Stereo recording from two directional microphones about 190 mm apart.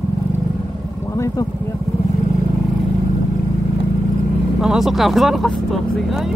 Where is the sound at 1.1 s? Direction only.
15° left (ahead or behind).